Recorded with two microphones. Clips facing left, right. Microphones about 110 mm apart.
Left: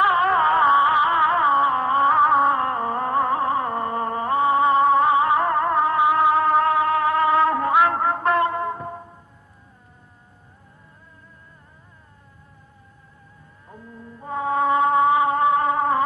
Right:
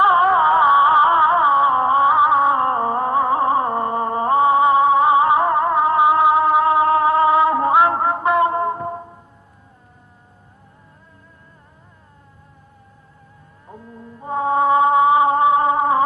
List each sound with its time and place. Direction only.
0.0 s music: 20° right (ahead or behind)
2.0 s music: 10° right (ahead or behind)
2.5 s music: 25° right (ahead or behind)
4.6 s music: 5° right (ahead or behind)
5.0 s music: 20° right (ahead or behind)
8.5 s music: 25° right (ahead or behind)
14.2 s music: 25° right (ahead or behind)